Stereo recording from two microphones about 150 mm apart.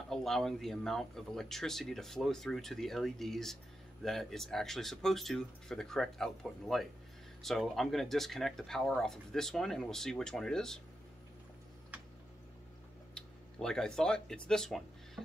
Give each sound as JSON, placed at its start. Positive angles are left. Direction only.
{"t": 0.1, "sound": "speech", "side_deg": 0}
{"t": 13.1, "sound": "speech", "side_deg": 5}